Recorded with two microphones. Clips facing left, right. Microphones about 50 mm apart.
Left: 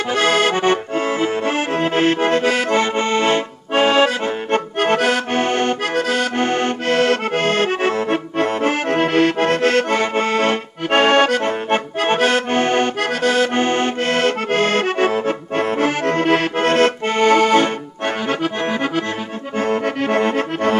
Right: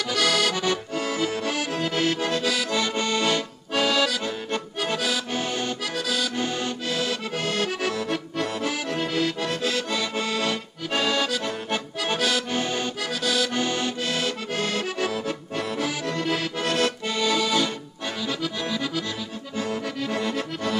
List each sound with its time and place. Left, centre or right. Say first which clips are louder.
0.1 s accordion: left 7 dB; left